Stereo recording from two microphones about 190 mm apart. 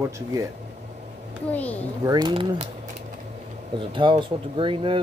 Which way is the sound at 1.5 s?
10° left (ahead or behind).